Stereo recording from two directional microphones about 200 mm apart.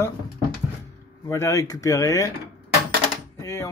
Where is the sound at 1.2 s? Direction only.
15° left (ahead or behind).